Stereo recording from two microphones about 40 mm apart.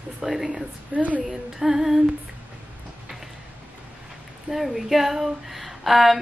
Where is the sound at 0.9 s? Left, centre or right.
Right.